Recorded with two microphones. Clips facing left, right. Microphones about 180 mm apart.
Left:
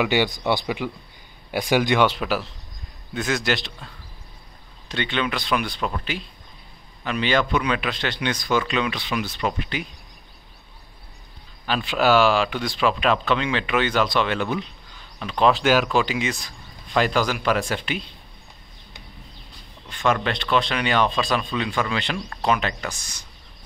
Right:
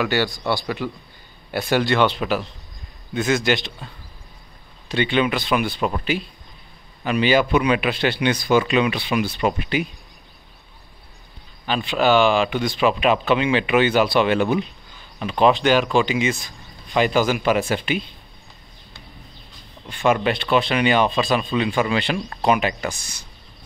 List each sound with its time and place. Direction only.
0.0 s speech: 15° left (ahead or behind); by 9.8 s 10° right (ahead or behind)
11.6 s speech: 5° left (ahead or behind)
15.5 s speech: 5° left (ahead or behind)
19.9 s speech: 10° right (ahead or behind)
22.9 s speech: 30° right (ahead or behind)